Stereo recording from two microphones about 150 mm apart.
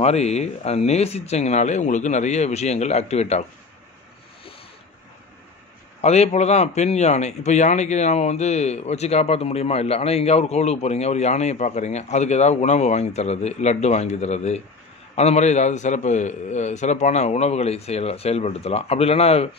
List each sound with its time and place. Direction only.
0.0 s a man's voice: 45° left (ahead or behind)
5.9 s a man's voice: 45° left (ahead or behind)